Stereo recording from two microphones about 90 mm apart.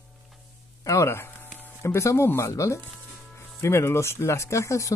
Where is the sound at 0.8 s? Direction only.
35° left (ahead or behind).